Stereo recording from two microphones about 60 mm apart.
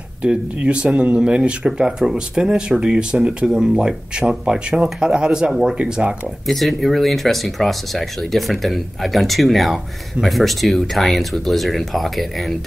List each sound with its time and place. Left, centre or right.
0.2 s speech: centre
6.4 s speech: centre